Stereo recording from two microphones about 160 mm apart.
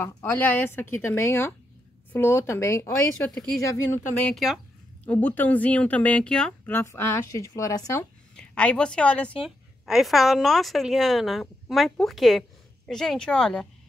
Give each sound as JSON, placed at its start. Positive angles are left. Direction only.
{"t": 0.0, "sound": "speech", "side_deg": 15}
{"t": 3.3, "sound": "speech", "side_deg": 0}
{"t": 3.9, "sound": "speech", "side_deg": 15}
{"t": 8.4, "sound": "speech", "side_deg": 5}